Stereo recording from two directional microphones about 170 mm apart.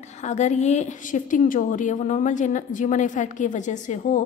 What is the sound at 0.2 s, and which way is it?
A woman's voice, 40° left (ahead or behind).